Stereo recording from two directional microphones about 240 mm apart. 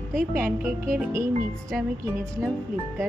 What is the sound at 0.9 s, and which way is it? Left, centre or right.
Speech, centre.